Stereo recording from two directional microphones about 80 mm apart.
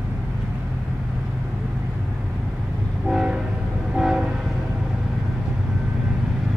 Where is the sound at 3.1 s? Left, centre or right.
Centre.